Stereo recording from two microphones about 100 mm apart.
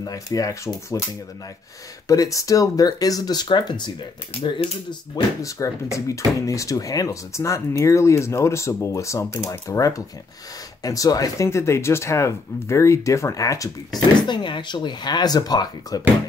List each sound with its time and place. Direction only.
0.0 s speech: 35° left (ahead or behind)
2.0 s speech: 35° left (ahead or behind)
4.3 s speech: 75° left (ahead or behind)
5.4 s speech: 30° left (ahead or behind)
14.2 s speech: 50° left (ahead or behind)